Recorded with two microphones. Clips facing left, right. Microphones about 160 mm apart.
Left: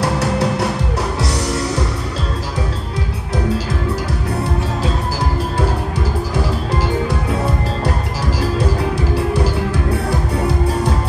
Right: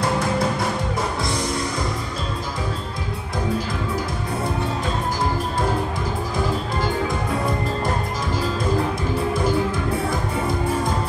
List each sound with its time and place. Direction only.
0.0 s music: 70° left (ahead or behind)
6.7 s music: 80° left
9.1 s music: 75° left (ahead or behind)